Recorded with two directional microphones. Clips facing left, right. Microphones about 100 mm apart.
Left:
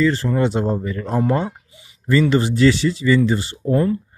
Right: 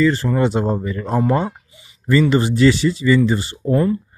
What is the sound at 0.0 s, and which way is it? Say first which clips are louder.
Speech: right 1 dB; 5° right (ahead or behind).